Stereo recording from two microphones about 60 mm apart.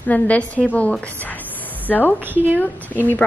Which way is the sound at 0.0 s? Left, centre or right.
Left.